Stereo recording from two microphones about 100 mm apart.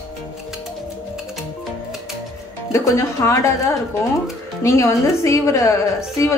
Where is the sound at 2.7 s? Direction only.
30° left (ahead or behind).